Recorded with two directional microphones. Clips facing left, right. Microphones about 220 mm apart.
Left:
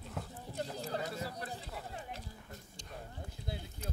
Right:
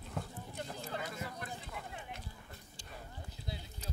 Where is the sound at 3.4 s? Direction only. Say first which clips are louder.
Left 3 dB; 55° left (ahead or behind).